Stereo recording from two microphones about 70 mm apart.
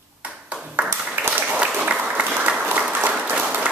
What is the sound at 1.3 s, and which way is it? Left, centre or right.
Applause, centre.